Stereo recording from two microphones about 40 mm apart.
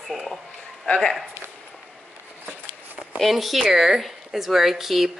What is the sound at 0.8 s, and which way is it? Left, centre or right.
Speech, centre.